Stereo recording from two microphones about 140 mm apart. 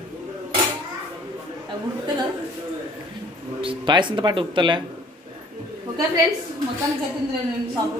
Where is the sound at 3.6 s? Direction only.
35° right (ahead or behind).